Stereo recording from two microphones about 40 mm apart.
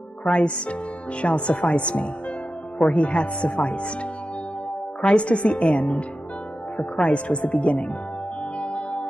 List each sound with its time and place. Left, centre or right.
0.2 s speech: left
5.0 s speech: left
8.5 s music: left